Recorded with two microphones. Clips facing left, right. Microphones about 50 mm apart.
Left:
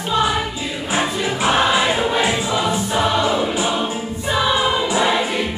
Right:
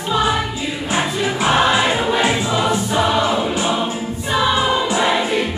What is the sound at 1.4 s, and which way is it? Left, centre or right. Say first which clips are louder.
Choir: right 1 dB; centre.